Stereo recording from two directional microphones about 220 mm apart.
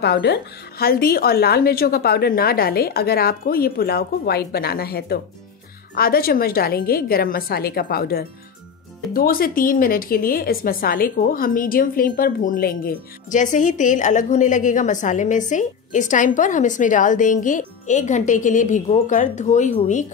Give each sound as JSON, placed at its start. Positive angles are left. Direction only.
{"t": 0.0, "sound": "a woman's voice", "side_deg": 50}